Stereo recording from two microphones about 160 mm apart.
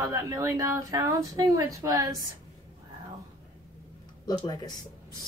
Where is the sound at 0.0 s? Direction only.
20° right (ahead or behind).